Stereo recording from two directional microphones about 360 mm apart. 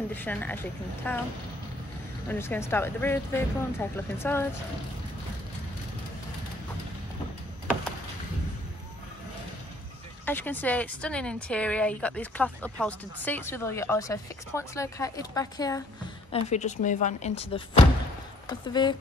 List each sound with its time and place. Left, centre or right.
0.1 s a woman's voice: centre
2.2 s speech: centre
10.2 s a woman's voice: centre